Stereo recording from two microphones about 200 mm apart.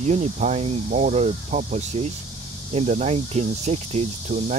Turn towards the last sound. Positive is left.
turn(degrees=-35)  # may be behind; listen again after turning